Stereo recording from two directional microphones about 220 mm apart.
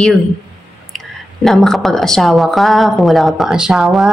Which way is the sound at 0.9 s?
Centre (ahead or behind).